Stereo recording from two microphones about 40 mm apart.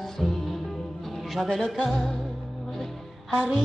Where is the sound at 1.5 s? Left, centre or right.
Centre.